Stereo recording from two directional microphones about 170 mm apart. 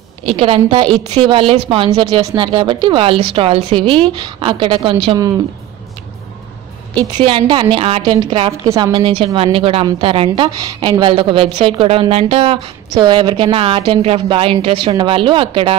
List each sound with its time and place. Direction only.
0.2 s a woman's voice: 35° right (ahead or behind)
7.2 s a woman's voice: 30° right (ahead or behind)
8.6 s a woman's voice: 15° right (ahead or behind)
8.9 s a woman's voice: 30° right (ahead or behind)